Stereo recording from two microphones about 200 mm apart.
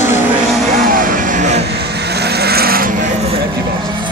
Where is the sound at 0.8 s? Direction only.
45° right (ahead or behind).